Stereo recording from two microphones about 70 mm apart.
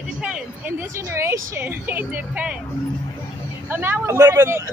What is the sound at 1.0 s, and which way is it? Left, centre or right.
Speech, right.